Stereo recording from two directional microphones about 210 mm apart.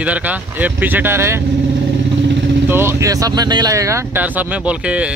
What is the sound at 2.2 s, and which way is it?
Vehicle, 60° right (ahead or behind).